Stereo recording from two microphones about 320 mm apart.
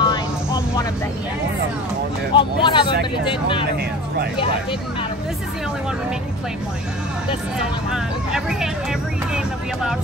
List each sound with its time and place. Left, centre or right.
0.0 s vehicle: centre
2.3 s speech: centre
7.9 s speech: centre